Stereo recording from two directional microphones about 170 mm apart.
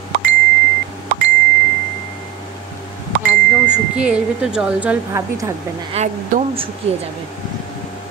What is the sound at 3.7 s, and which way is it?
A woman's voice, 5° right (ahead or behind).